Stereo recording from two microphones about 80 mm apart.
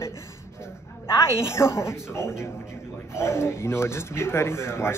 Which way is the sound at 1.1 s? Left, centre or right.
Left.